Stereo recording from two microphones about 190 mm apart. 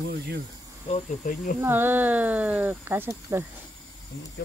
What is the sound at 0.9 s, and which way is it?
Insect, 40° left (ahead or behind).